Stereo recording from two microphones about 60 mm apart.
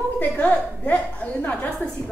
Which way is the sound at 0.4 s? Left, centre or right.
Left.